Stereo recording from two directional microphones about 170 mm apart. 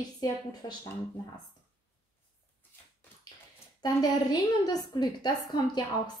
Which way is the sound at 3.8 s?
20° left (ahead or behind).